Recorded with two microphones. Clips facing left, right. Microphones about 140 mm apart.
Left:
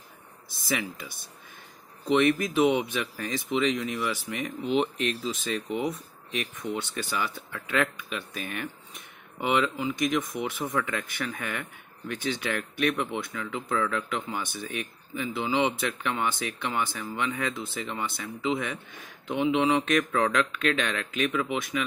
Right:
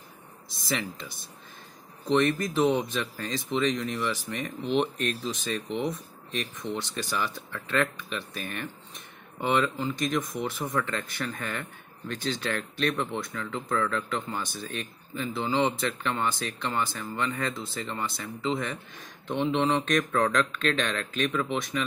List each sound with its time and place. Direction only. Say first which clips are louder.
0.7 s speech: left 1 dB; 10° left (ahead or behind)
2.0 s speech: left 1 dB; 10° left (ahead or behind)